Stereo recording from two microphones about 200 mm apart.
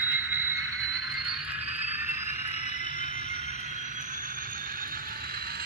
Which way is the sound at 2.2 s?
30° left (ahead or behind).